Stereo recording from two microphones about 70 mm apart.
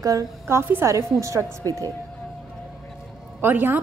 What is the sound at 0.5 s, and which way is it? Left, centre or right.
A woman's voice, right.